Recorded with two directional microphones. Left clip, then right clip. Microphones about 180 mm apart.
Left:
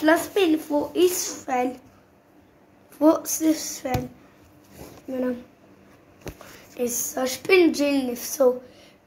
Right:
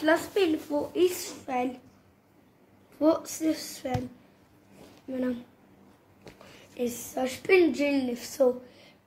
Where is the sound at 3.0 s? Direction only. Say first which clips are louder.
Left 6 dB; 10° right (ahead or behind).